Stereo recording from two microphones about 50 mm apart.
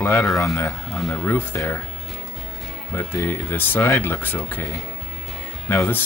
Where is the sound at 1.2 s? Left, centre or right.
Left.